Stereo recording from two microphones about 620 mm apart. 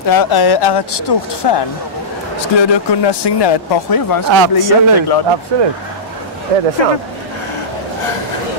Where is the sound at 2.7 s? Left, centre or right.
Left.